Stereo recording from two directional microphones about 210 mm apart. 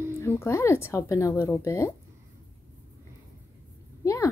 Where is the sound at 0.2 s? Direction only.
15° left (ahead or behind).